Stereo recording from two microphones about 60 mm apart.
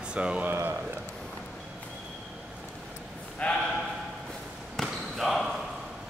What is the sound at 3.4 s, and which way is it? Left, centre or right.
Speech, left.